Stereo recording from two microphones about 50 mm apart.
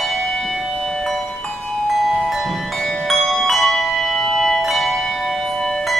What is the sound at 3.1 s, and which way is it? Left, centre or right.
Music, centre.